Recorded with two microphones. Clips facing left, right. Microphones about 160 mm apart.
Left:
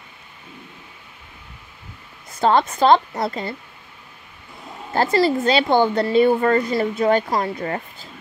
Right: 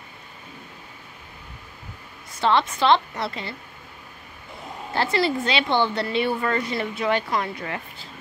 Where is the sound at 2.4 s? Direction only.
45° left (ahead or behind).